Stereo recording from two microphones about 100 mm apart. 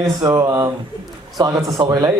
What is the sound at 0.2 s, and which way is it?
Speech, 40° right (ahead or behind).